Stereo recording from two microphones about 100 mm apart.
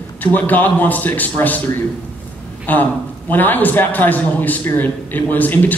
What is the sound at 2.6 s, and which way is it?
A man's voice, 15° left (ahead or behind).